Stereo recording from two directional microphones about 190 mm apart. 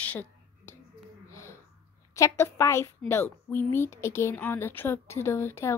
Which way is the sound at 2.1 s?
15° left (ahead or behind).